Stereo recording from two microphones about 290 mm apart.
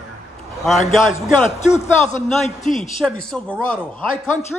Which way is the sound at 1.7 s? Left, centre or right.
Left.